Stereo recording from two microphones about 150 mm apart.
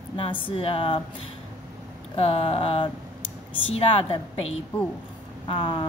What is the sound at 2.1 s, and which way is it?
A woman's voice, 40° left (ahead or behind).